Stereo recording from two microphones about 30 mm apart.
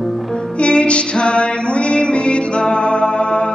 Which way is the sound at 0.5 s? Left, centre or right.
Left.